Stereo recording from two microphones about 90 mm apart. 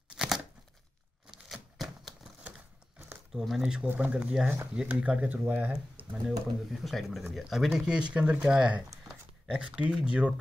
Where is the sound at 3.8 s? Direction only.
20° right (ahead or behind).